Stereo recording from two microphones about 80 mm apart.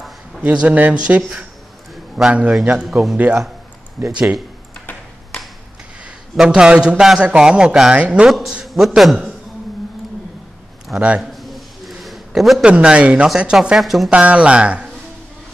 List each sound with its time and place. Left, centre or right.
0.4 s a man's voice: centre
4.1 s a man's voice: centre
6.3 s a man's voice: centre
8.3 s a man's voice: centre
11.1 s a sound: centre
12.6 s a man's voice: centre
14.1 s a man's voice: centre